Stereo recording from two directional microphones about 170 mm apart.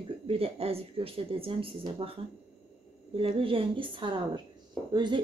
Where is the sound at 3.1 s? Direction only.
35° right (ahead or behind).